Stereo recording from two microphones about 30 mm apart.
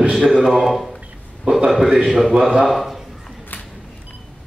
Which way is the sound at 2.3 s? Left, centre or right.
Centre.